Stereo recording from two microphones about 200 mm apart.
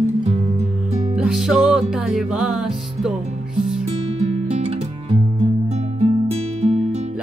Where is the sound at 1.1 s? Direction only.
5° right (ahead or behind).